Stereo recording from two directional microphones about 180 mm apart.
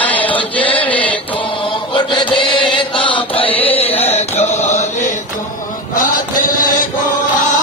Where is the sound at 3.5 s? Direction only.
10° left (ahead or behind).